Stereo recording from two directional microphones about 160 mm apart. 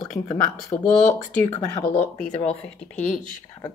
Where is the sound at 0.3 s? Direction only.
20° left (ahead or behind).